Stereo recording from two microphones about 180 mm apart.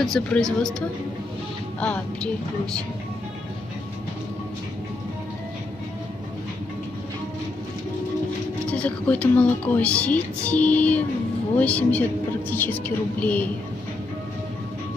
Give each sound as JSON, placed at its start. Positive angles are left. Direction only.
{"t": 0.0, "sound": "speech", "side_deg": 5}
{"t": 8.6, "sound": "speech", "side_deg": 5}